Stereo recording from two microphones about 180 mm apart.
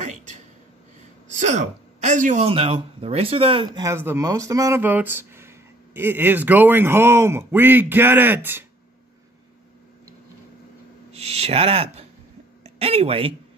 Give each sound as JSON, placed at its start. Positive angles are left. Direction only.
{"t": 1.4, "sound": "speech", "side_deg": -40}
{"t": 2.4, "sound": "speech", "side_deg": -30}
{"t": 3.8, "sound": "speech", "side_deg": -15}
{"t": 11.1, "sound": "speech", "side_deg": -35}